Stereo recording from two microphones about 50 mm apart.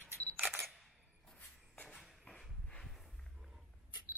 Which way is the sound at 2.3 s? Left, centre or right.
Centre.